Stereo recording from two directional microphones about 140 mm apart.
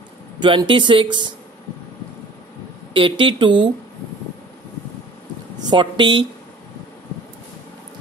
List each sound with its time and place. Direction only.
0.4 s speech: 35° right (ahead or behind)
2.9 s speech: 35° right (ahead or behind)
5.6 s speech: 35° right (ahead or behind)